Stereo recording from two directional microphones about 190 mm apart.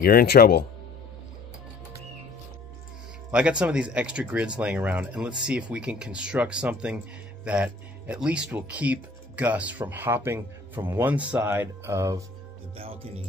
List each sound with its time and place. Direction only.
0.0 s speech: 50° left (ahead or behind)
3.3 s speech: 5° right (ahead or behind)
12.7 s music: 30° right (ahead or behind)